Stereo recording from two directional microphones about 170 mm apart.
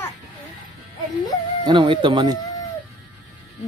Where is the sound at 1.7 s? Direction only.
30° right (ahead or behind).